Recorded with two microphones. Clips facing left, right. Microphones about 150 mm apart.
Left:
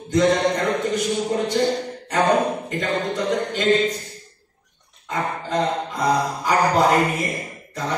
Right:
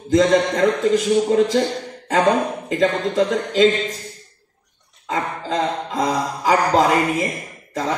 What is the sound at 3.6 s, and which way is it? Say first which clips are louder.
Speech: right 7 dB; 90° right.